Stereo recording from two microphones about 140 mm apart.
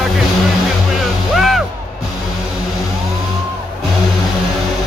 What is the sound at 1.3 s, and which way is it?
Music, centre (ahead or behind).